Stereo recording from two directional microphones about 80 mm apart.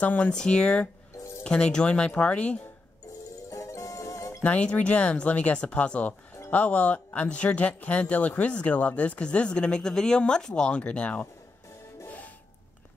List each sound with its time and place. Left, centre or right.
0.0 s speech: centre
3.4 s music: left
4.4 s speech: centre